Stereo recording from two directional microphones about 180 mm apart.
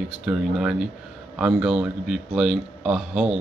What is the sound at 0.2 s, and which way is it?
Speech, 5° right (ahead or behind).